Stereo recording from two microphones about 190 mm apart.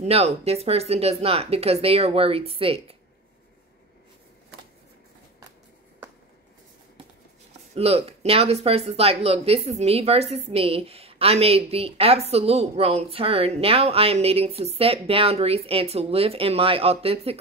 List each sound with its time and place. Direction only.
0.0 s speech: 35° right (ahead or behind)
7.7 s speech: 35° right (ahead or behind)